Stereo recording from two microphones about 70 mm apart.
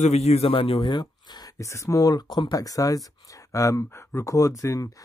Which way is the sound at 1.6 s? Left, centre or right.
Left.